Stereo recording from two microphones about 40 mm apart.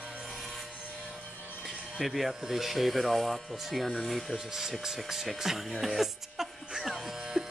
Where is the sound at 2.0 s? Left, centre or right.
Centre.